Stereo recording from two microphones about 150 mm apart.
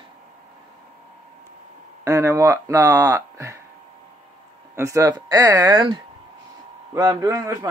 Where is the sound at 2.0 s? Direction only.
20° right (ahead or behind).